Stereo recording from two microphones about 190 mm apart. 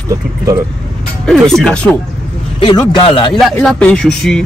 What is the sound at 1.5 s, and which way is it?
Speech, 5° left (ahead or behind).